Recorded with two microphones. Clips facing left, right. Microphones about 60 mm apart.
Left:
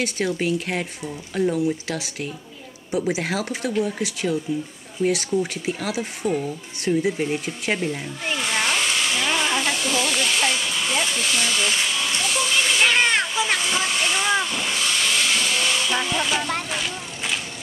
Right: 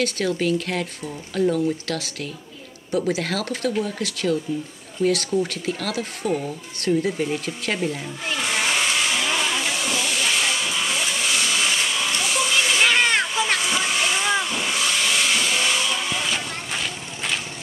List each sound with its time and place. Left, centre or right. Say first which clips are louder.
0.0 s speech: right 1 dB; centre
8.4 s hiss: even; centre
16.0 s music: left 3 dB; centre
16.7 s a sound: left 1 dB; centre